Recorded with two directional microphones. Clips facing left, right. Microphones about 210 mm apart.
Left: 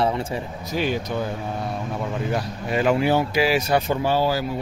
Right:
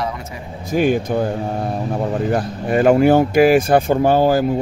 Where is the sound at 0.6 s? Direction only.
50° right (ahead or behind).